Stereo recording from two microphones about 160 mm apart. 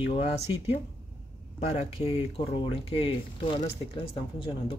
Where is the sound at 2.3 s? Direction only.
35° left (ahead or behind).